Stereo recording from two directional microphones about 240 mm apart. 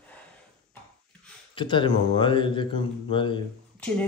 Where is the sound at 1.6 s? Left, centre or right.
Centre.